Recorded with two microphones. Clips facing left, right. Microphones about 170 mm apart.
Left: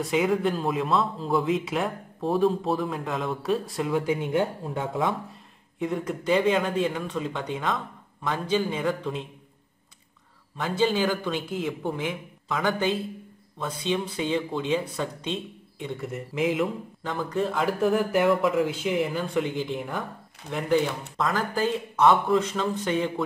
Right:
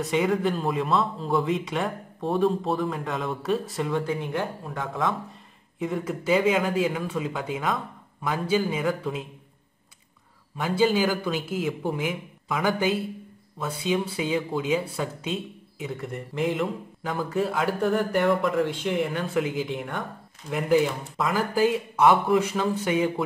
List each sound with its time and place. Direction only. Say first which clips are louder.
0.0 s speech: even; centre (ahead or behind)
4.0 s speech: left 3 dB; 20° left (ahead or behind)
5.8 s speech: even; centre (ahead or behind)
10.6 s speech: right 2 dB; 5° right (ahead or behind)